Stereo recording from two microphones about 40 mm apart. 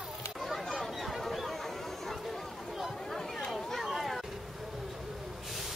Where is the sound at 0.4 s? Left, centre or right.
Centre.